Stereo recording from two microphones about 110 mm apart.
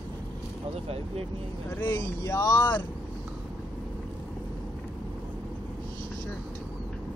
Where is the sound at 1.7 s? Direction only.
25° left (ahead or behind).